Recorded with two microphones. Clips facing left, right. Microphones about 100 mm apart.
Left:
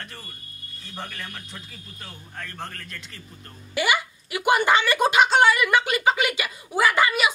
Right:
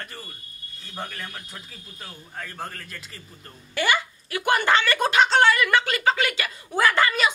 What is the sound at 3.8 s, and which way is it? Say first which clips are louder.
A woman's voice: even; 10° left (ahead or behind).